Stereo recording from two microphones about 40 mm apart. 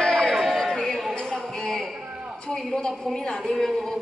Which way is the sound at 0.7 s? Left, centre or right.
Centre.